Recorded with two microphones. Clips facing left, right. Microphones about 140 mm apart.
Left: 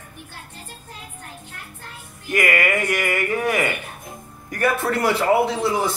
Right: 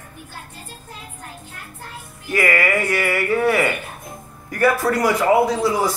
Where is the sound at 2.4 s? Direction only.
20° left (ahead or behind).